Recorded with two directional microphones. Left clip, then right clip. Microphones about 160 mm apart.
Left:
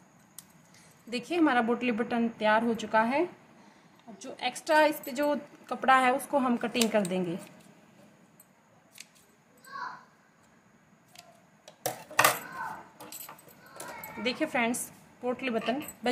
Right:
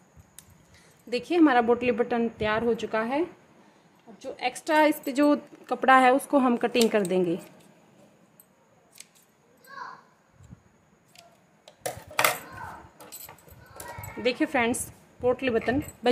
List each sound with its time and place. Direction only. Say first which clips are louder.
1.1 s a woman's voice: right 5 dB; 40° right (ahead or behind)
4.2 s a woman's voice: right 4 dB; 35° right (ahead or behind)
14.2 s a woman's voice: right 4 dB; 40° right (ahead or behind)